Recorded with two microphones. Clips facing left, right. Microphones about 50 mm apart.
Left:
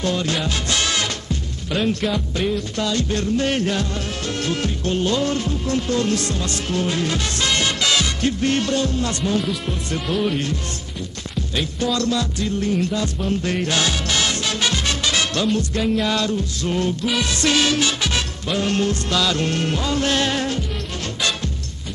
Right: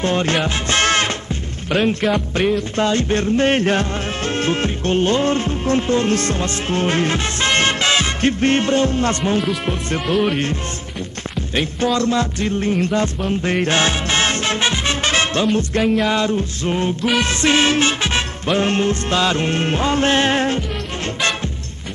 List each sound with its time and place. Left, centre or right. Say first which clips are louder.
0.0 s music: right 4 dB; right
2.1 s music: right 4 dB; right
11.5 s music: right 4 dB; right